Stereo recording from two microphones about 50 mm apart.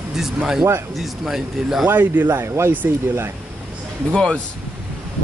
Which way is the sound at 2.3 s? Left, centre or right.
Right.